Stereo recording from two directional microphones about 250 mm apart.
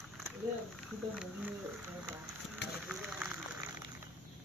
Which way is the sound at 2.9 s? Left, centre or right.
Centre.